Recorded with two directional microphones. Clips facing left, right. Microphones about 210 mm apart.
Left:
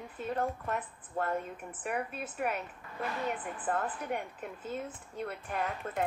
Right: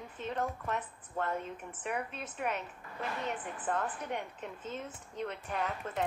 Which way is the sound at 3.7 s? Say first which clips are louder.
Left 2 dB; 10° left (ahead or behind).